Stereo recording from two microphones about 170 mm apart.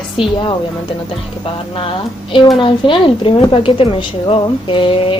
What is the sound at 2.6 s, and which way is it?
A woman's voice, 30° left (ahead or behind).